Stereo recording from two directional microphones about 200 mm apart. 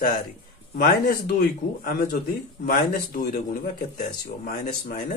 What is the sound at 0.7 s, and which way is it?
A man's voice, 50° left (ahead or behind).